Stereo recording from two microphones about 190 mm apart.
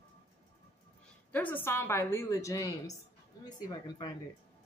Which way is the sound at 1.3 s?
10° left (ahead or behind).